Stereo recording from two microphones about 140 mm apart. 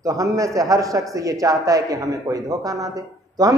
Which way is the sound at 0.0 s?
25° right (ahead or behind).